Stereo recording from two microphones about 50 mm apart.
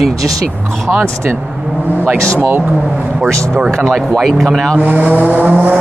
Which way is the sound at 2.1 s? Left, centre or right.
Right.